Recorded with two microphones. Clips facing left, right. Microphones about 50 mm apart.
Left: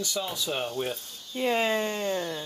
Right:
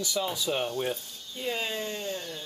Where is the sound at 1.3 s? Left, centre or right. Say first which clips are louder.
Left 7 dB; left.